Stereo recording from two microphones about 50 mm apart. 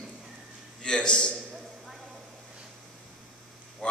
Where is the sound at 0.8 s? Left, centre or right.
Centre.